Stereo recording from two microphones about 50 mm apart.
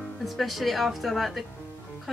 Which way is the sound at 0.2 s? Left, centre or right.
Centre.